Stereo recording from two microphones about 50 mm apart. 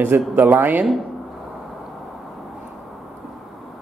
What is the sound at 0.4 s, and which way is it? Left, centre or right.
Speech, right.